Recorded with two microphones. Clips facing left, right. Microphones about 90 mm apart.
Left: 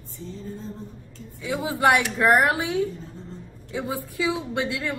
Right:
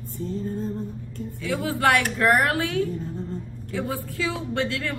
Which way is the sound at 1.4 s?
20° left (ahead or behind).